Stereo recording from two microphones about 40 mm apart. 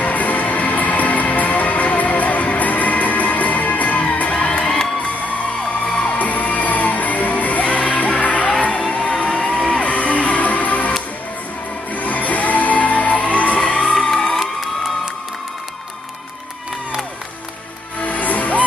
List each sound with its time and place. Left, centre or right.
0.0 s music: left; by 4.8 s centre
5.9 s music: left
6.1 s music: left
11.9 s music: left
13.9 s music: centre
18.0 s music: left